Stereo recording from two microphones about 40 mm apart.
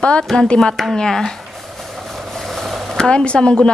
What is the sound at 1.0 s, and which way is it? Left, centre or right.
Speech, centre.